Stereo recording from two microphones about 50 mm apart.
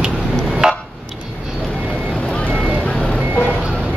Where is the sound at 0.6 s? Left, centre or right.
Centre.